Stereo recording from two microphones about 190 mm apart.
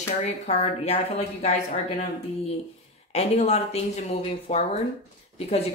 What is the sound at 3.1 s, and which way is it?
Speech, 35° left (ahead or behind).